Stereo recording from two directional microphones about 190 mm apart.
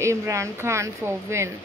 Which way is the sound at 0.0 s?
15° right (ahead or behind).